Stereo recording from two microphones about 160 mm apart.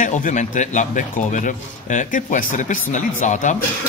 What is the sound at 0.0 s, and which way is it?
A man's voice, 50° left (ahead or behind).